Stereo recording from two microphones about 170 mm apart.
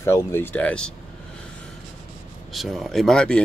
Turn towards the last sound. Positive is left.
turn(degrees=5)  # may be behind; listen again after turning